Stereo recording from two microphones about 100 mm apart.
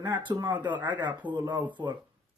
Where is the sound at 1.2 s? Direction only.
15° right (ahead or behind).